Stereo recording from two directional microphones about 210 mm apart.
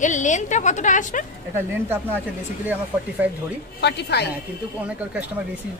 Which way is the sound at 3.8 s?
50° left (ahead or behind).